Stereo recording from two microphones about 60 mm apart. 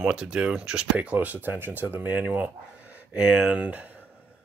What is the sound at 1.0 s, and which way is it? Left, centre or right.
Speech, right.